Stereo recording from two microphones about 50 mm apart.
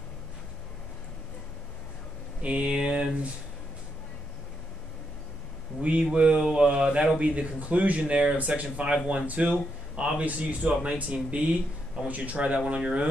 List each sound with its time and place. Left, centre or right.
2.4 s speech: right
5.8 s speech: right
8.9 s speech: centre
9.3 s speech: right